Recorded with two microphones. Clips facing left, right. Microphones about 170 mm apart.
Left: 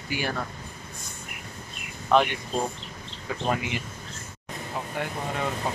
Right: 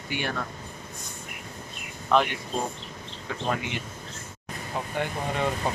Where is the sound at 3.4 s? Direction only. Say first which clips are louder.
Left 2 dB; 5° left (ahead or behind).